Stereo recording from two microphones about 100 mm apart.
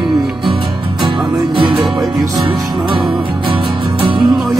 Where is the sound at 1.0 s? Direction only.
50° right (ahead or behind).